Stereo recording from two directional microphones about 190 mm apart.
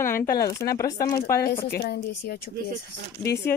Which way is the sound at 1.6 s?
55° left (ahead or behind).